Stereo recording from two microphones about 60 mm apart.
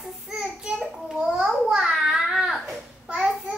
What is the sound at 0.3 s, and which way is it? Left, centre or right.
Child singing, centre.